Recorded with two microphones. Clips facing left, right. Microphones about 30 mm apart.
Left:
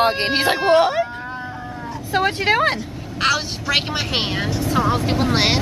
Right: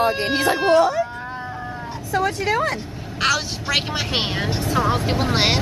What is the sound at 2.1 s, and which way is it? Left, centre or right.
Speech, left.